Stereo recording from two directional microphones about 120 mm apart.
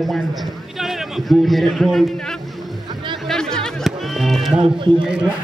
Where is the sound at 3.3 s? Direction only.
5° left (ahead or behind).